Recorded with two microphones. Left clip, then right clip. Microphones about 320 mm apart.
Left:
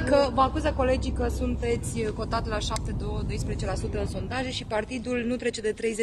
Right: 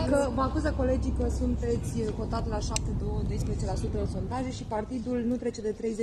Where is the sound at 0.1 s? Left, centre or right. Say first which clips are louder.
Left 7 dB; left.